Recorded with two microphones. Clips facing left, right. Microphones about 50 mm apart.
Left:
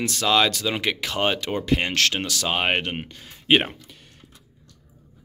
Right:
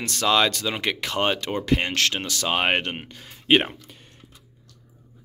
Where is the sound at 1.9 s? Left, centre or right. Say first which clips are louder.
Left 1 dB; right.